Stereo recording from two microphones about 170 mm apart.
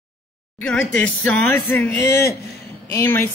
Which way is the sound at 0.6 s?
5° left (ahead or behind).